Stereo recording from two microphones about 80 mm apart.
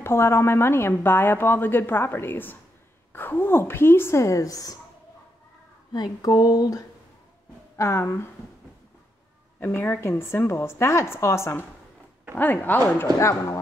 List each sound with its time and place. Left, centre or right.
0.0 s a woman's voice: left
5.9 s a sound: left
7.7 s speech: left
9.6 s a woman's voice: left
12.4 s a woman's voice: left
13.3 s a sound: left